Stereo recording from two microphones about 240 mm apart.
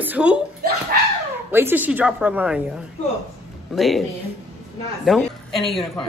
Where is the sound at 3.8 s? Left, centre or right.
Centre.